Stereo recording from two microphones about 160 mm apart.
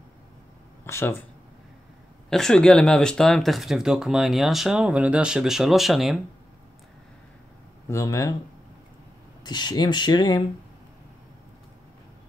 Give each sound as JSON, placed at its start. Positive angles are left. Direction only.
{"t": 0.8, "sound": "speech", "side_deg": 15}
{"t": 2.2, "sound": "speech", "side_deg": 5}
{"t": 7.9, "sound": "speech", "side_deg": 20}
{"t": 9.4, "sound": "speech", "side_deg": 25}